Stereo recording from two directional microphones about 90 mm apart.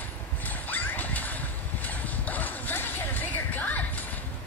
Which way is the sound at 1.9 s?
20° left (ahead or behind).